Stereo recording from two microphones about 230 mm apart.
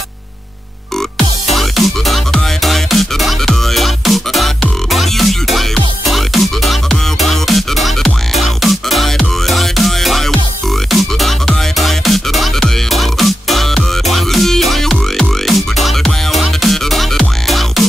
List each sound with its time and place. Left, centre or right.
1.1 s music: centre